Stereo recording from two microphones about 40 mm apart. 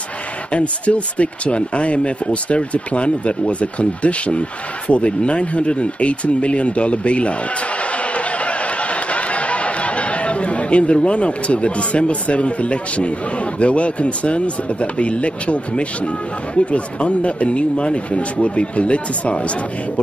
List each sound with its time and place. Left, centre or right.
0.5 s speech: left
8.0 s a sound: left
13.6 s speech: left